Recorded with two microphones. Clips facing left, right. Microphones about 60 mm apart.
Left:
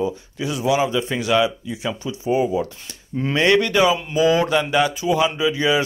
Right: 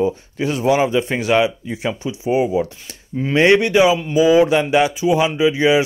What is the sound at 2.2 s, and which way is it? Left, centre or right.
Speech, right.